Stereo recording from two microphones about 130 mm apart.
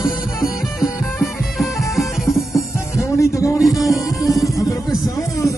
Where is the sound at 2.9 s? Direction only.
25° left (ahead or behind).